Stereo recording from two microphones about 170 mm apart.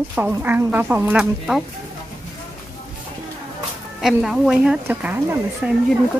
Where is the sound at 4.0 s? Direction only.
5° right (ahead or behind).